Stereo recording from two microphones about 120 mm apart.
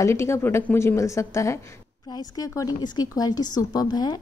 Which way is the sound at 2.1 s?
35° left (ahead or behind).